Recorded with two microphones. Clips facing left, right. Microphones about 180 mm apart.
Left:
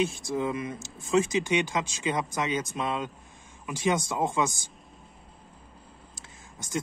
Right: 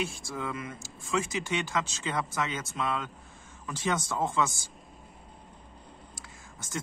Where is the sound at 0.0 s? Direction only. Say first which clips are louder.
Left 7 dB; 20° left (ahead or behind).